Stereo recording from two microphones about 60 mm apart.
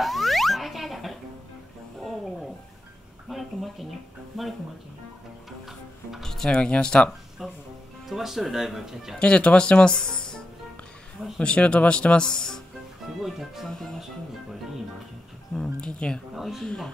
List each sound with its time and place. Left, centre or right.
0.0 s music: centre
3.3 s a sound: centre
4.3 s speech: centre
5.7 s music: centre
6.3 s speech: centre
8.1 s speech: centre
9.2 s speech: centre
13.2 s speech: centre
13.7 s music: centre
15.5 s speech: centre
16.3 s speech: centre